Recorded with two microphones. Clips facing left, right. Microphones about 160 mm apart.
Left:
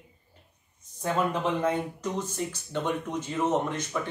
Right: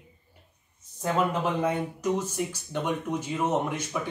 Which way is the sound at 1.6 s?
10° right (ahead or behind).